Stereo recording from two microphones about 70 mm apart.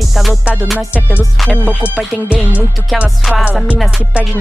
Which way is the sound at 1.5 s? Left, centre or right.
Centre.